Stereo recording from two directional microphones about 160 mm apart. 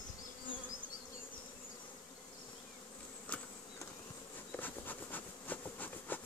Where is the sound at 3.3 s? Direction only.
10° left (ahead or behind).